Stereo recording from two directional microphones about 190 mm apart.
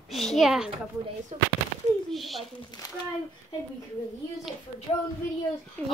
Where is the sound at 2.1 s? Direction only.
Centre (ahead or behind).